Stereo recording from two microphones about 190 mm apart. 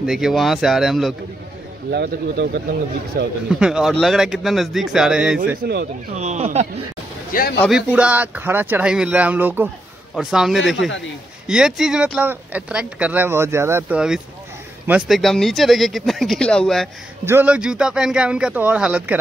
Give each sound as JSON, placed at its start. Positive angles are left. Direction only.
{"t": 0.0, "sound": "speech", "side_deg": 0}
{"t": 1.9, "sound": "a man's voice", "side_deg": -55}
{"t": 3.4, "sound": "speech", "side_deg": -5}
{"t": 5.6, "sound": "a man's voice", "side_deg": -60}
{"t": 6.1, "sound": "speech", "side_deg": -35}
{"t": 7.6, "sound": "speech", "side_deg": -5}
{"t": 17.2, "sound": "speech", "side_deg": -10}